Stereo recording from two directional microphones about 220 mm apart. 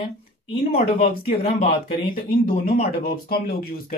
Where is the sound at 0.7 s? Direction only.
40° left (ahead or behind).